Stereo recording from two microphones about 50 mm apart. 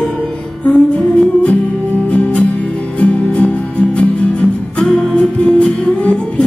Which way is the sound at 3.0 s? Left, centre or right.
Left.